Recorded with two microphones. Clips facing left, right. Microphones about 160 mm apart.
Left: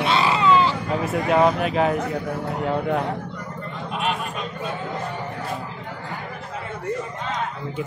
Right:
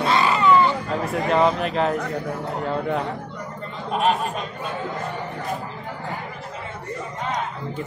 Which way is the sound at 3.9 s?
40° right (ahead or behind).